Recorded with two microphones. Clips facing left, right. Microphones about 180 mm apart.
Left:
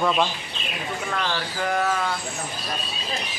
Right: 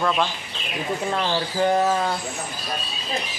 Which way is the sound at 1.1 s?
25° right (ahead or behind).